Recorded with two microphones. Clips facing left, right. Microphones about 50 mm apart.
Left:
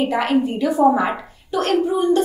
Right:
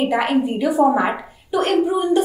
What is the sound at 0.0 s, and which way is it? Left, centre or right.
A woman's voice, centre.